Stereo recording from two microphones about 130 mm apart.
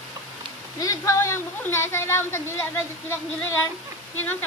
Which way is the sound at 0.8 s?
25° left (ahead or behind).